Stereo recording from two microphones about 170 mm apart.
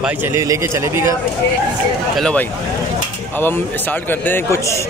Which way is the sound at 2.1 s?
5° left (ahead or behind).